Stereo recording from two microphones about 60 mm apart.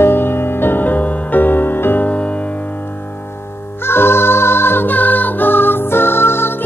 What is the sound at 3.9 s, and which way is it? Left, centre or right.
Music, left.